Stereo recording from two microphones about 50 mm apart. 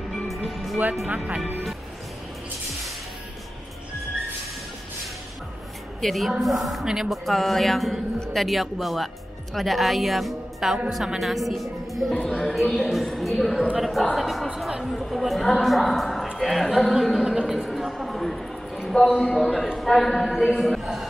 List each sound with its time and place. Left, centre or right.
0.5 s music: centre
1.1 s speech: right
5.9 s a woman's voice: centre
12.1 s a woman's voice: centre
14.1 s a sound: centre
14.8 s a woman's voice: centre
16.9 s a sound: centre
19.0 s a man's voice: centre
19.3 s a man's voice: centre